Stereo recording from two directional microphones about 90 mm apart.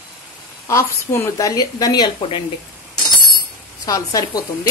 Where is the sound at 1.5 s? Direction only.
45° left (ahead or behind).